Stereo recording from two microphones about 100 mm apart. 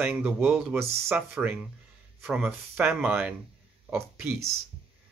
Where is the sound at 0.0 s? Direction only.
15° right (ahead or behind).